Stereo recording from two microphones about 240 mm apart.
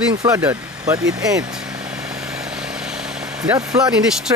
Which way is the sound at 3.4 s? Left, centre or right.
Centre.